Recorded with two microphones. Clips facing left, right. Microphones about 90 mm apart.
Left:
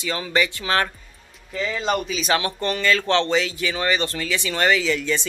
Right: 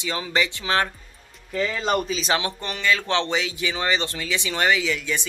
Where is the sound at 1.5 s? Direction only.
40° right (ahead or behind).